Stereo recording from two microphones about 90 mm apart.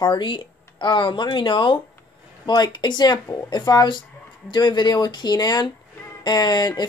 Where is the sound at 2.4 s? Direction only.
55° left (ahead or behind).